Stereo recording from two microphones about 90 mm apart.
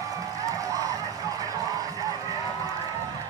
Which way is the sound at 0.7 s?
40° right (ahead or behind).